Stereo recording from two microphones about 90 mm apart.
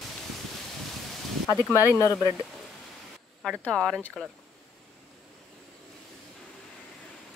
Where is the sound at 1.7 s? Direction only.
35° left (ahead or behind).